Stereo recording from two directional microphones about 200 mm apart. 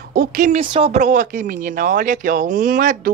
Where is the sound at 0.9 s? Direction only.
40° right (ahead or behind).